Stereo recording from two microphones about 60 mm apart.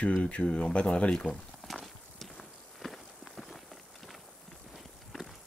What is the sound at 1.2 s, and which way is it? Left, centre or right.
Walk, centre.